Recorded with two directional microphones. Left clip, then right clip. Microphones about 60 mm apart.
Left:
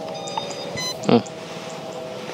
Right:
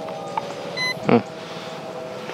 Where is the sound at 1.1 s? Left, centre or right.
Left.